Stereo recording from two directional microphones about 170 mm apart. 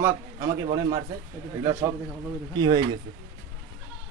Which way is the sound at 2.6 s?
25° right (ahead or behind).